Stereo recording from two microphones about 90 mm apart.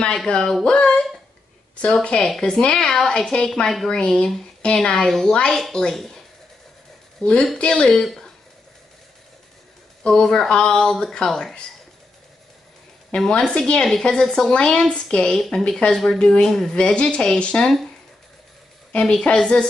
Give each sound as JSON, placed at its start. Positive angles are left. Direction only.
{"t": 0.0, "sound": "a woman's voice", "side_deg": 10}
{"t": 10.0, "sound": "a woman's voice", "side_deg": 5}
{"t": 13.1, "sound": "a woman's voice", "side_deg": 10}
{"t": 18.9, "sound": "a woman's voice", "side_deg": 10}